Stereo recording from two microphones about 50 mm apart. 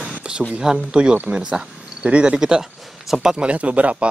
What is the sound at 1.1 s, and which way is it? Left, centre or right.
Speech, right.